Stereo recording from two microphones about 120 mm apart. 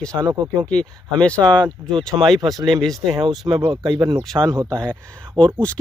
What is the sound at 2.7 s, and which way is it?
Speech, centre (ahead or behind).